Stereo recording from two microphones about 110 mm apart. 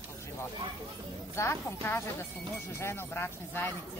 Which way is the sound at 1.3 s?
25° left (ahead or behind).